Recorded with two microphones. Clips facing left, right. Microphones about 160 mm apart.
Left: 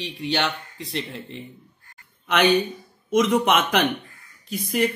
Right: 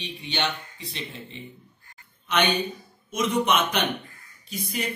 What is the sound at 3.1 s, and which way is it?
Speech, 90° left.